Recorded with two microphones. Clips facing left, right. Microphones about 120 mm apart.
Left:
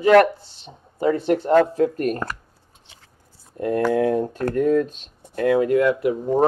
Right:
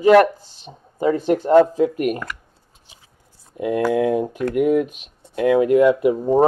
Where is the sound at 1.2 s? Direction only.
40° right (ahead or behind).